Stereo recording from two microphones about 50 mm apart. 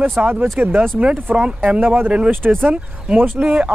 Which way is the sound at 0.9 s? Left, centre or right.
Right.